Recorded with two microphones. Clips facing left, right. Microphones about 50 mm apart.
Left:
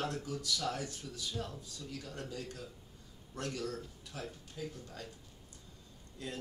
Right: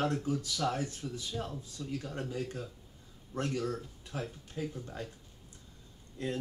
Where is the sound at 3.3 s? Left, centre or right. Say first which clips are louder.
Right 5 dB; right.